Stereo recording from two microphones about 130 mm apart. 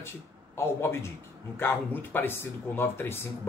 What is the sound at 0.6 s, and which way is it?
A man's voice, 20° left (ahead or behind).